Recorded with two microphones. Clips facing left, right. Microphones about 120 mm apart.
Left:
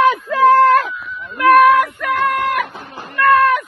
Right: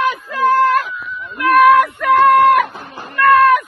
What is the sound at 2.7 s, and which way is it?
Cat, 10° right (ahead or behind).